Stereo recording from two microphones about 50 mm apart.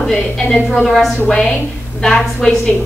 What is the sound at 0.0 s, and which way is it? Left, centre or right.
A woman's voice, centre.